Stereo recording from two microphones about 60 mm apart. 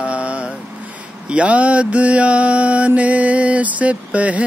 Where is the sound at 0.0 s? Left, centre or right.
Right.